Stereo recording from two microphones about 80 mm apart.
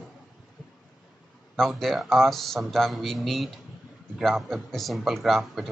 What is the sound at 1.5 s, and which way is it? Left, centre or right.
A man's voice, centre.